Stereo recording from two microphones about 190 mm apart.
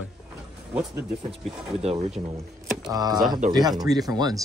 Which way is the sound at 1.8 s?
35° right (ahead or behind).